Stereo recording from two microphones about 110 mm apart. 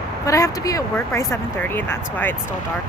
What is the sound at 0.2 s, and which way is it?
Speech, 30° left (ahead or behind).